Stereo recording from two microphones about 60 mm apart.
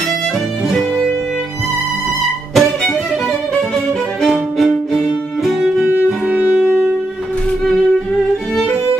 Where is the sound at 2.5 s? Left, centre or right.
Centre.